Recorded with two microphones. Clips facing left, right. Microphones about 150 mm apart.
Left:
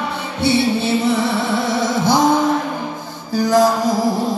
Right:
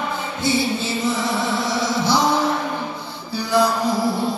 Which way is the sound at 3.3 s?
45° left (ahead or behind).